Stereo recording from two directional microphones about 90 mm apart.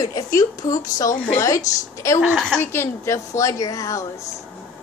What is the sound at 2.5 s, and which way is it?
Speech, 25° left (ahead or behind).